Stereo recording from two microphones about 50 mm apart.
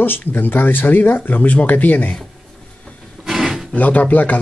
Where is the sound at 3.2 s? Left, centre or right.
Centre.